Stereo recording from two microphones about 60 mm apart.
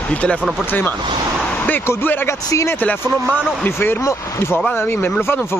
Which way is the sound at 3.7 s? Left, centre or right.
Left.